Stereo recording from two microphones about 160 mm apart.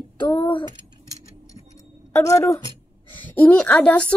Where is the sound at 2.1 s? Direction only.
15° left (ahead or behind).